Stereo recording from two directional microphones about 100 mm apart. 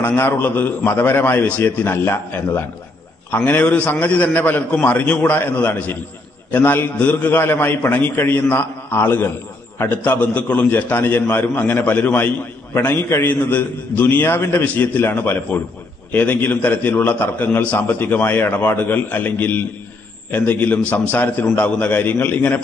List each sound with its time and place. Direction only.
0.0 s a man's voice: 20° left (ahead or behind)